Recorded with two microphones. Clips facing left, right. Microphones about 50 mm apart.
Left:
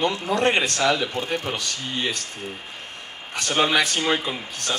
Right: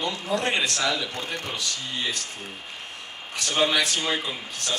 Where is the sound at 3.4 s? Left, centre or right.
Left.